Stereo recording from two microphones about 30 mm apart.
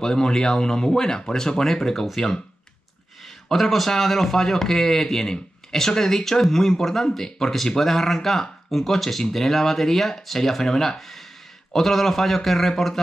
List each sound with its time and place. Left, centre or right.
0.0 s speech: left
3.4 s speech: centre